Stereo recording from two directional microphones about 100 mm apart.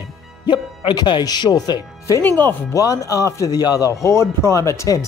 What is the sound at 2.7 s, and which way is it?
Speech, 35° left (ahead or behind).